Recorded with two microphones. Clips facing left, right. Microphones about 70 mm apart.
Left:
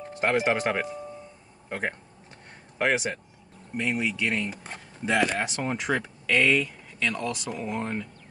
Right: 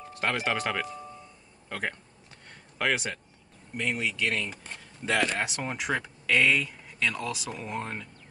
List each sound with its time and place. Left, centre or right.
0.2 s speech: left
3.7 s speech: centre
5.4 s speech: centre